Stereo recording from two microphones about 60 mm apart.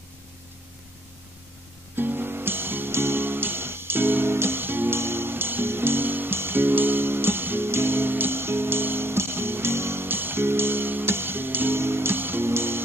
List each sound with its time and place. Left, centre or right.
2.0 s music: right